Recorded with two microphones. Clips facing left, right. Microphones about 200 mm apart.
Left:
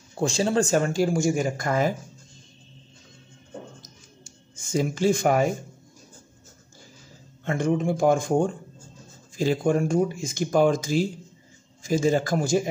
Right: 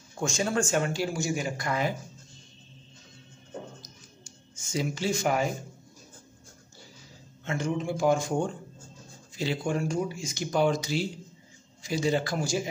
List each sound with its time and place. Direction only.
0.2 s speech: 30° left (ahead or behind)
4.6 s speech: 50° left (ahead or behind)
7.4 s speech: 55° left (ahead or behind)